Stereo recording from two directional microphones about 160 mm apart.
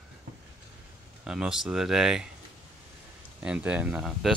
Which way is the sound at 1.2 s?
5° right (ahead or behind).